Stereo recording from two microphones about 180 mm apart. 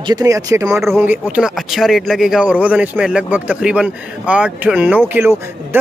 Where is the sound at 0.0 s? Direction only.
20° right (ahead or behind).